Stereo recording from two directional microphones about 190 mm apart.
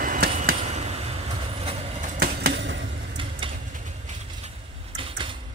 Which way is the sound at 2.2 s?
55° right (ahead or behind).